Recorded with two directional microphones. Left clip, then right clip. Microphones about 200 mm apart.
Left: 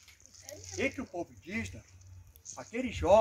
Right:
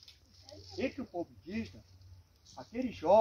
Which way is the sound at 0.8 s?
15° left (ahead or behind).